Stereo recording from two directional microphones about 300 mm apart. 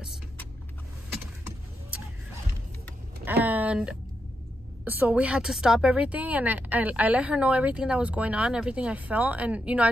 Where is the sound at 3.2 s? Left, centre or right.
Centre.